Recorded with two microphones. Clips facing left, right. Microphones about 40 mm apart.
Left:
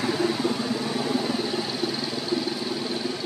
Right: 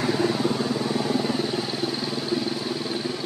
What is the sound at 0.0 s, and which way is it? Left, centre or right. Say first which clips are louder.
Vehicle: right 1 dB; centre.